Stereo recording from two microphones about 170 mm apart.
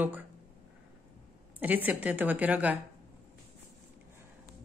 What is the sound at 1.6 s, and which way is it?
Speech, 10° right (ahead or behind).